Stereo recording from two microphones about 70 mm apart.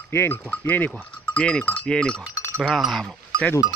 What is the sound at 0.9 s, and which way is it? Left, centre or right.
Speech, centre.